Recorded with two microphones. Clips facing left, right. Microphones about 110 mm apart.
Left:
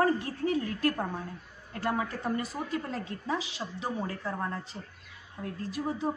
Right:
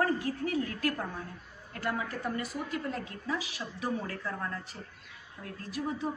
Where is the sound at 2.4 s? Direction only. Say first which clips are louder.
Left 2 dB; 30° left (ahead or behind).